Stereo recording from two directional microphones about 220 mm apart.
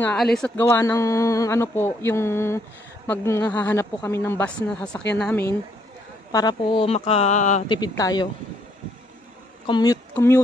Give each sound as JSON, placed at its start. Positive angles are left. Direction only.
{"t": 0.0, "sound": "a woman's voice", "side_deg": 5}
{"t": 6.3, "sound": "speech", "side_deg": 20}
{"t": 7.6, "sound": "speech", "side_deg": 20}
{"t": 9.7, "sound": "speech", "side_deg": 15}